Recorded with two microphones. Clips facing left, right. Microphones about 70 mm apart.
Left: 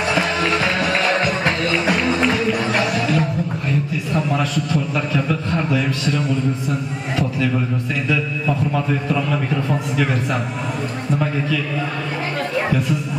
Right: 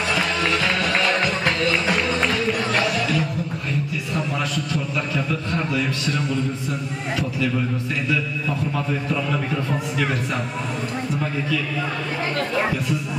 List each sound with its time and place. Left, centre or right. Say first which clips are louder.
0.1 s music: left 3 dB; left
2.0 s music: left 3 dB; centre
2.9 s a sound: left 3 dB; left
8.5 s a man's voice: left 6 dB; centre